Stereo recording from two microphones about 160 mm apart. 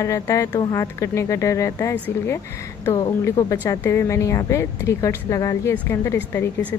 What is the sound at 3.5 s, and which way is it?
A woman's voice, 10° left (ahead or behind).